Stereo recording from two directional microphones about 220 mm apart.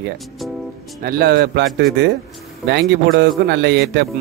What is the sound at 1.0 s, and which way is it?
Speech, 45° right (ahead or behind).